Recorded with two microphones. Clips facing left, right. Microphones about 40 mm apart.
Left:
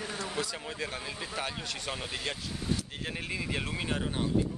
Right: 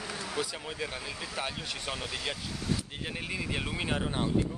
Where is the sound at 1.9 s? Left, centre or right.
Centre.